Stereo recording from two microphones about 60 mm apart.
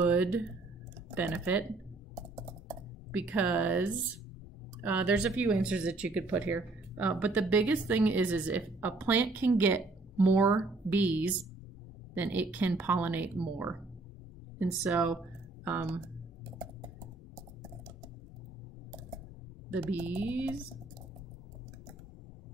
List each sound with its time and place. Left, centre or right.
0.0 s a sound: right
1.1 s a woman's voice: right
2.2 s computer keyboard: right
3.1 s a woman's voice: right
15.6 s speech: right
19.7 s a woman's voice: right